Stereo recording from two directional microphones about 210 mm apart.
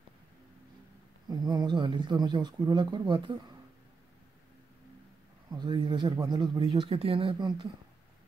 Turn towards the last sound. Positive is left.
turn(degrees=-20)  # may be behind; listen again after turning